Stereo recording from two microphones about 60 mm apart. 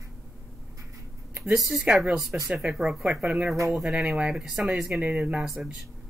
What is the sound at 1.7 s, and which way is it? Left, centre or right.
Speech, centre.